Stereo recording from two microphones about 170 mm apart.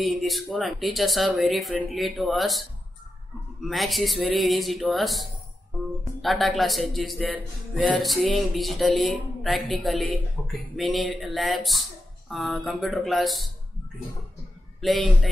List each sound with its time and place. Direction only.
0.0 s speech: centre (ahead or behind)
3.6 s speech: centre (ahead or behind)
6.2 s speech: centre (ahead or behind)
14.8 s a man's voice: centre (ahead or behind)